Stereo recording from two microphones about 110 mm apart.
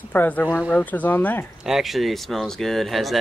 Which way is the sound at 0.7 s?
15° left (ahead or behind).